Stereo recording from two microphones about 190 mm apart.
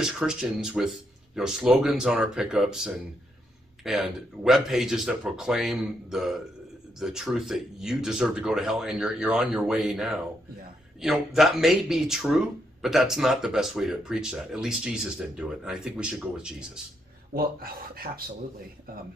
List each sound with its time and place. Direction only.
0.0 s speech: 5° right (ahead or behind)
17.3 s speech: 50° right (ahead or behind)